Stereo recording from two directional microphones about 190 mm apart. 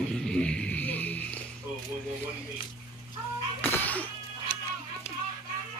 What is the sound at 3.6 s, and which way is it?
Music, 10° left (ahead or behind).